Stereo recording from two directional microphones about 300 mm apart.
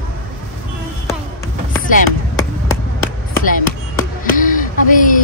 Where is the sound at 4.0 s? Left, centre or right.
Left.